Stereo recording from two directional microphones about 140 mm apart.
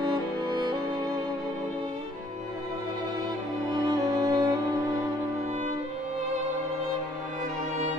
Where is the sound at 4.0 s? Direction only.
25° right (ahead or behind).